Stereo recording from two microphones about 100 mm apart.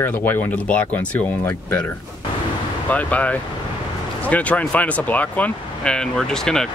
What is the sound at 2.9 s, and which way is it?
Speech, 15° left (ahead or behind).